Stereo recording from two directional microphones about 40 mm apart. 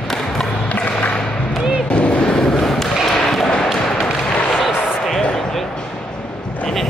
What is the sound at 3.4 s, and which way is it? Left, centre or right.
Tap, centre.